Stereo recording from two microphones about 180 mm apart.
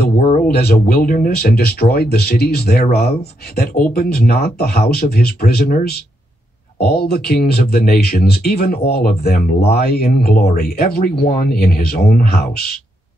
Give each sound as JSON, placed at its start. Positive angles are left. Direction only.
{"t": 0.2, "sound": "speech", "side_deg": 55}